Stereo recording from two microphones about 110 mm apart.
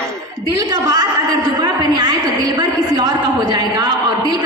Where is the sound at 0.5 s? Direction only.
35° right (ahead or behind).